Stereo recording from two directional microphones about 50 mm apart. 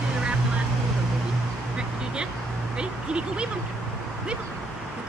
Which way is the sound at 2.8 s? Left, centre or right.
Centre.